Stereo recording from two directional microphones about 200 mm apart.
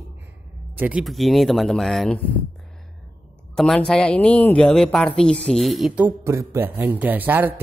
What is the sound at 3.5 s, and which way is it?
Speech, 5° left (ahead or behind).